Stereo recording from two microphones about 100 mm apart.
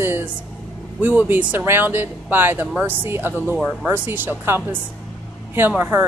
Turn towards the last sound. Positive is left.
turn(degrees=-20)  # may be behind; listen again after turning